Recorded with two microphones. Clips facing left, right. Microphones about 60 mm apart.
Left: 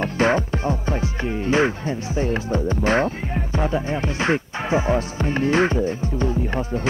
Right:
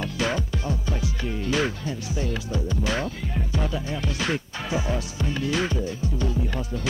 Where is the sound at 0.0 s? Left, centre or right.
Left.